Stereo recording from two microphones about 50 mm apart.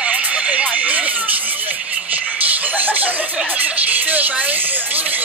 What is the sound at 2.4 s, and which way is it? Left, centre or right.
Music, right.